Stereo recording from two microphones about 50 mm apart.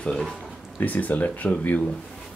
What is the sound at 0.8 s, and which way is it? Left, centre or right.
Speech, left.